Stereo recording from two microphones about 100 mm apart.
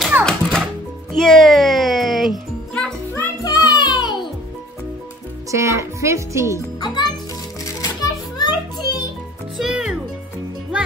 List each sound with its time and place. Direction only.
0.2 s music: 5° left (ahead or behind)
2.7 s music: 10° left (ahead or behind)
3.4 s music: 40° left (ahead or behind)
5.5 s speech: 30° right (ahead or behind)
6.8 s music: 45° left (ahead or behind)
7.6 s music: 35° left (ahead or behind)
9.6 s music: 5° right (ahead or behind)